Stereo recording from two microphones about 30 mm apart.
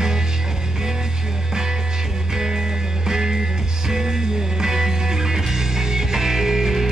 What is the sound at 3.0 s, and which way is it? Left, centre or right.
Music, right.